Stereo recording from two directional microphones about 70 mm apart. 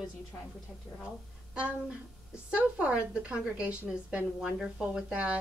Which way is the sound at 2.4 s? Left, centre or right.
Centre.